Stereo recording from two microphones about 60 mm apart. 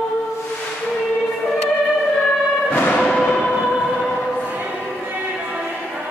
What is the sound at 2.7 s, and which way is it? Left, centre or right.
Music, left.